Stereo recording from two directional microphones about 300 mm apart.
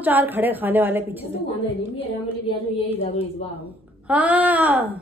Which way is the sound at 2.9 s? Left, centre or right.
Centre.